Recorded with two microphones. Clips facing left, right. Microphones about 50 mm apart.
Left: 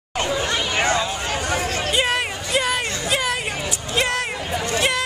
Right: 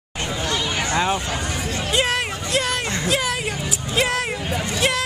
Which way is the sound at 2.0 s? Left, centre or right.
Centre.